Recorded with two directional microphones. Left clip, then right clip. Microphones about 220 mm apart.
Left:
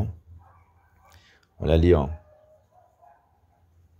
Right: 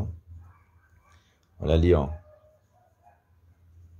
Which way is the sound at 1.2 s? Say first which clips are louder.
Left 3 dB; 20° left (ahead or behind).